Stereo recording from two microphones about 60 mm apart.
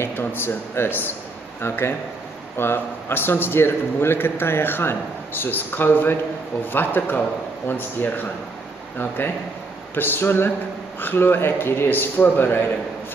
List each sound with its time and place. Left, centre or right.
0.1 s a man's voice: left